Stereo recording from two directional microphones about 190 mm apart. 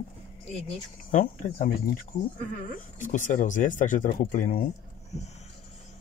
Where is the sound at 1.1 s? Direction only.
45° left (ahead or behind).